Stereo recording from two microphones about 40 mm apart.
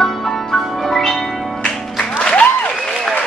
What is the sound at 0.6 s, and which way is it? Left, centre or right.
Music, centre.